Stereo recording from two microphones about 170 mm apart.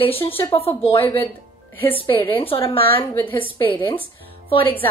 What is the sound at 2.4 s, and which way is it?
A woman's voice, 35° left (ahead or behind).